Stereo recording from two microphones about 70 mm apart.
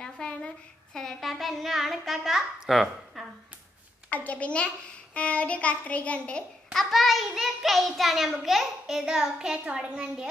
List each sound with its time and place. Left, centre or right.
0.0 s a sound: centre
0.9 s child singing: centre
4.1 s child singing: left
6.7 s child singing: centre
9.7 s a child's voice: centre